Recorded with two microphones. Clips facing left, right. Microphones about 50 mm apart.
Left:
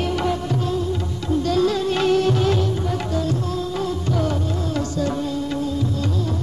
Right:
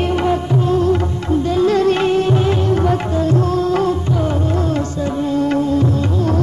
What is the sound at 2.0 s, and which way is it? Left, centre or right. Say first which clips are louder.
Music: right 3 dB; right.